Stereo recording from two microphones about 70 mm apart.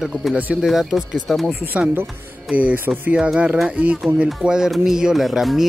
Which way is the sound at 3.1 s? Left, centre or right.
Centre.